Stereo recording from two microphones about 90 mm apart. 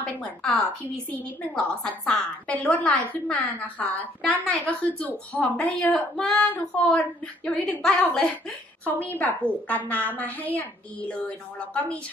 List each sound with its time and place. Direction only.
0.0 s a woman's voice: 10° left (ahead or behind)